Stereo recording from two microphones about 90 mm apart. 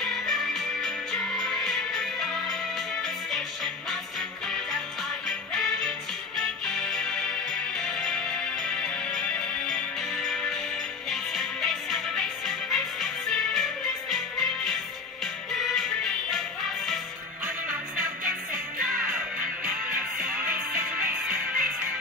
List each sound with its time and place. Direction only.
0.0 s music: 5° left (ahead or behind)
5.5 s music: 10° left (ahead or behind)
19.6 s music: 15° right (ahead or behind)